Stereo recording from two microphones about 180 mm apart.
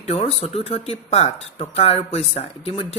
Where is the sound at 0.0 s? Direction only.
35° left (ahead or behind).